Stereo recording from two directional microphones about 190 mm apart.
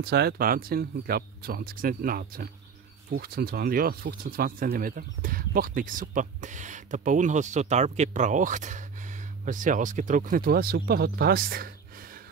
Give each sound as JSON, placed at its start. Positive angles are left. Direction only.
{"t": 0.0, "sound": "speech", "side_deg": -55}